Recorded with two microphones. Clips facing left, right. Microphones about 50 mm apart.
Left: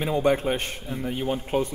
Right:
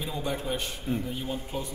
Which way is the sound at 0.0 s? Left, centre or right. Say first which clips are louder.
Left 10 dB; left.